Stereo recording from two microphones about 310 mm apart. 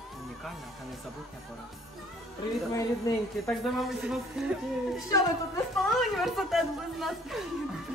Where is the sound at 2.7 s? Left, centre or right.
Centre.